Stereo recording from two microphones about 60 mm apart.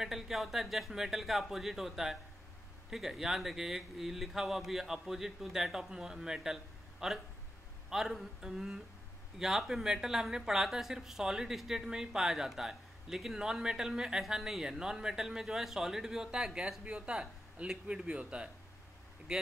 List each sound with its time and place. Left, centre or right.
0.0 s a woman's voice: centre